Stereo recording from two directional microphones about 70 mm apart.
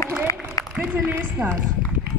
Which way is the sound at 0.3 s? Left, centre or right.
Left.